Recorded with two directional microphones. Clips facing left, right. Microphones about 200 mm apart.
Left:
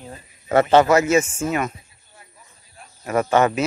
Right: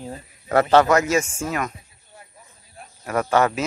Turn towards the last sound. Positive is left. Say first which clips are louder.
# left 2 dB
turn(degrees=5)  # may be behind; listen again after turning